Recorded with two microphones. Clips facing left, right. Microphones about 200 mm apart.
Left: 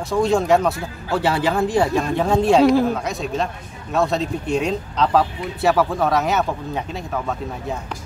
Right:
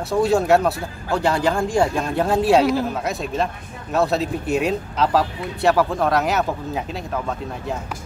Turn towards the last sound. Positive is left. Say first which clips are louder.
# left 1 dB
turn(degrees=0)  # may be behind; listen again after turning